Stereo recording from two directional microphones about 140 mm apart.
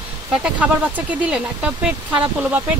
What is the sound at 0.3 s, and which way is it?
Speech, 10° right (ahead or behind).